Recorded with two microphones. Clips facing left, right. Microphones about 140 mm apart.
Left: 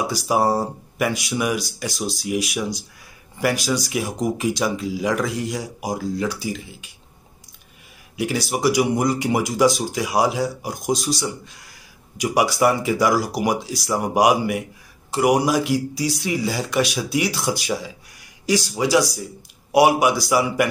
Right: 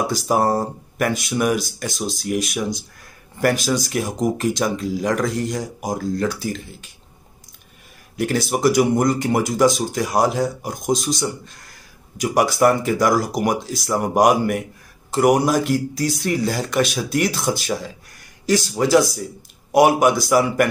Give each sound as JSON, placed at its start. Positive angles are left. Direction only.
{"t": 0.0, "sound": "speech", "side_deg": 10}
{"t": 8.2, "sound": "speech", "side_deg": 10}
{"t": 18.9, "sound": "speech", "side_deg": -50}
{"t": 19.7, "sound": "speech", "side_deg": 10}